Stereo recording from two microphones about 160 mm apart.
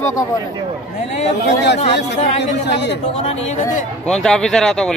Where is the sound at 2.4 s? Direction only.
90° left.